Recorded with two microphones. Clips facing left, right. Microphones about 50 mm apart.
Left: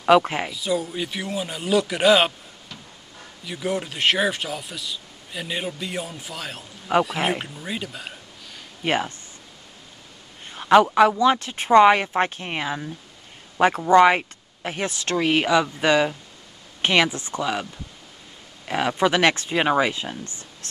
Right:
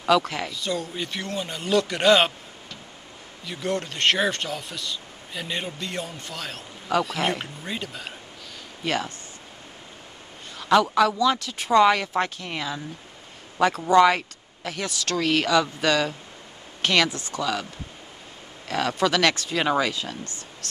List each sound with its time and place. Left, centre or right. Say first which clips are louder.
0.0 s speech: left 4 dB; left
0.5 s speech: left 4 dB; centre
3.4 s speech: left 1 dB; centre
6.9 s speech: left 3 dB; left
7.2 s speech: left 2 dB; centre
8.8 s speech: left 3 dB; left
10.5 s speech: left 4 dB; left
18.7 s speech: left 2 dB; left